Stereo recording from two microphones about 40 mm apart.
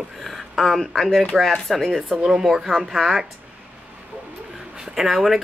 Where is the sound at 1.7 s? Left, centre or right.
Centre.